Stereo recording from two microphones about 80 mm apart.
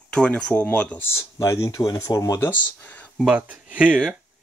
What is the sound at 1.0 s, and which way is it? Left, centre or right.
Speech, left.